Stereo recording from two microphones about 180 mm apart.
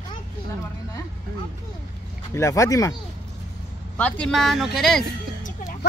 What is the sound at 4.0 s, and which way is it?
A man's voice, 5° left (ahead or behind).